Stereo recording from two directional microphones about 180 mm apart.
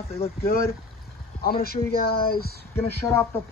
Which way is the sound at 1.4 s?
55° left (ahead or behind).